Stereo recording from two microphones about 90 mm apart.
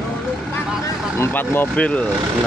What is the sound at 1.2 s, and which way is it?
Speech, 20° left (ahead or behind).